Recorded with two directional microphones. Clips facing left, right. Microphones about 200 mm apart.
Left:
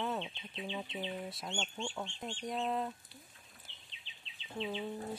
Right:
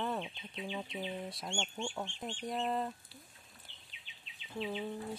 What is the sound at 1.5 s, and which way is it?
Speech, 10° right (ahead or behind).